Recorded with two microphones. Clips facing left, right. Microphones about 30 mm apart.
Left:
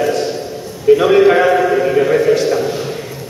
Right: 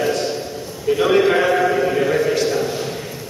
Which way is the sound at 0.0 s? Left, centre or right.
Centre.